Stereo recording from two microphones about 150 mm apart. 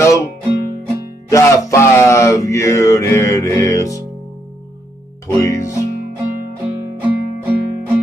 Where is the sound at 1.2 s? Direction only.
20° left (ahead or behind).